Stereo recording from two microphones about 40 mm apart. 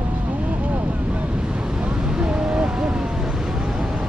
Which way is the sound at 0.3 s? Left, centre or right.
Right.